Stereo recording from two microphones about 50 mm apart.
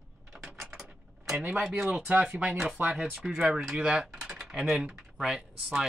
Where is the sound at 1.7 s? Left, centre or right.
Centre.